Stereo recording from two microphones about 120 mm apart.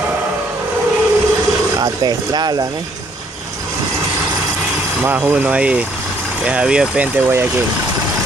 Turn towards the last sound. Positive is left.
turn(degrees=-10)  # may be behind; listen again after turning